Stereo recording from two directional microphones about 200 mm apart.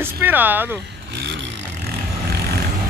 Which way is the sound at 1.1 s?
60° right (ahead or behind).